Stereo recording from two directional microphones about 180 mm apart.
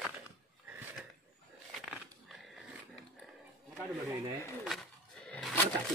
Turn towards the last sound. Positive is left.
turn(degrees=10)  # may be behind; listen again after turning